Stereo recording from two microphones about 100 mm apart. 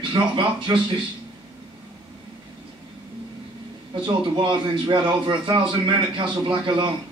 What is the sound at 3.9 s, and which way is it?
Speech, 55° right (ahead or behind).